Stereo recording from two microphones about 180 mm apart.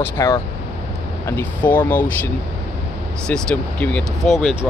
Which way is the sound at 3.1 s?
5° left (ahead or behind).